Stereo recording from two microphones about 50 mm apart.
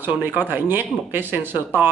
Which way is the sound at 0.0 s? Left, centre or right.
Right.